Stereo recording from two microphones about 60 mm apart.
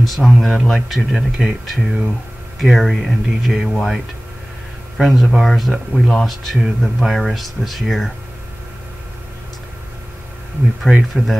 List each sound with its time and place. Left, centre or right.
0.0 s speech: centre
4.9 s speech: centre
10.8 s speech: centre